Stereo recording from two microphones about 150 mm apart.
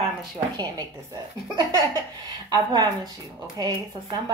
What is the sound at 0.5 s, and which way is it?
A woman's voice, 25° right (ahead or behind).